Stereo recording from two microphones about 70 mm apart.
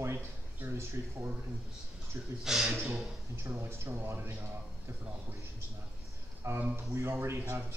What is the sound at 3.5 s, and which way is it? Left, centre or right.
Speech, right.